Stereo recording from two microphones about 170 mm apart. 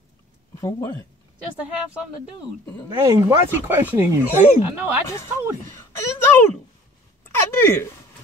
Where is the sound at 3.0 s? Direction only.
25° right (ahead or behind).